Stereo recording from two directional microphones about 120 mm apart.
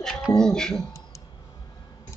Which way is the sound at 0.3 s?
5° left (ahead or behind).